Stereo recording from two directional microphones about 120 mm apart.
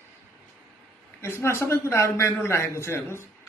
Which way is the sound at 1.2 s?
20° left (ahead or behind).